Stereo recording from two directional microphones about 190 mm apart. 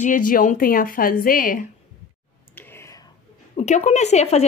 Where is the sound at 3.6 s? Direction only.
35° left (ahead or behind).